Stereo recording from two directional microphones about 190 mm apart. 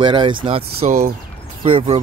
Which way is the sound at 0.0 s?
25° right (ahead or behind).